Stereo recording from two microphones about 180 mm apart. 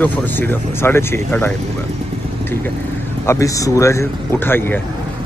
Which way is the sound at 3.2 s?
15° left (ahead or behind).